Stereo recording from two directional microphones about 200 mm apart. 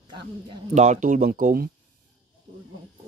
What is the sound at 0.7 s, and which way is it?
Speech, 35° right (ahead or behind).